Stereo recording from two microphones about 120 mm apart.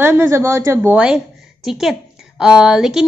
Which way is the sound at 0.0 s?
20° right (ahead or behind).